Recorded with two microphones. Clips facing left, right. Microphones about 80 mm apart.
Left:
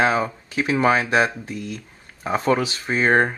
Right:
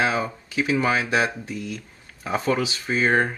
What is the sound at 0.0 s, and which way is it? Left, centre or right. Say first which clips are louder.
Speech: left 4 dB; left.